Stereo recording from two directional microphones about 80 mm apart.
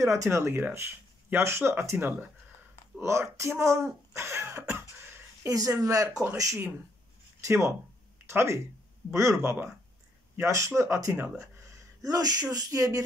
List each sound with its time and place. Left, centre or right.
0.0 s speech: right
5.4 s speech: right
12.0 s speech: right